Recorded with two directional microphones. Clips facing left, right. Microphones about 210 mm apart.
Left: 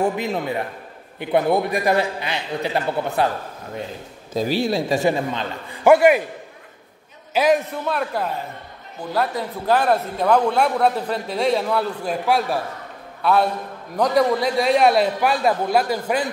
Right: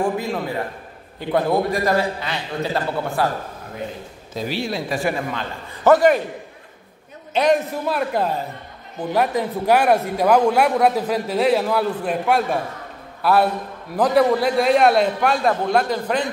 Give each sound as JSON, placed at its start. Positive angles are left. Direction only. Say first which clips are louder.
{"t": 0.0, "sound": "a man's voice", "louder": "even", "side_deg": 20}
{"t": 4.4, "sound": "a man's voice", "louder": "left 4 dB", "side_deg": 40}
{"t": 4.8, "sound": "speech", "louder": "left 3 dB", "side_deg": 25}
{"t": 5.9, "sound": "a man's voice", "louder": "left 1 dB", "side_deg": 10}
{"t": 7.3, "sound": "a man's voice", "louder": "even", "side_deg": 0}
{"t": 9.1, "sound": "a man's voice", "louder": "right 3 dB", "side_deg": -15}